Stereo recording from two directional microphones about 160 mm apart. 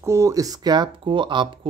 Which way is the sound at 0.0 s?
15° right (ahead or behind).